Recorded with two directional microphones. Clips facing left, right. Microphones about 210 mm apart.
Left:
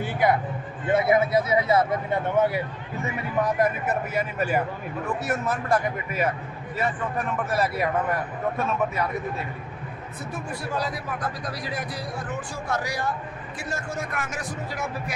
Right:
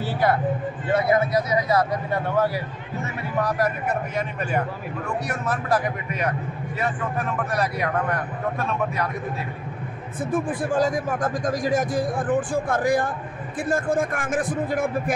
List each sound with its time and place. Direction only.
0.0 s vehicle: 20° left (ahead or behind)
0.8 s speech: 25° left (ahead or behind)
4.1 s a man's voice: 5° left (ahead or behind)
10.3 s a man's voice: 50° right (ahead or behind)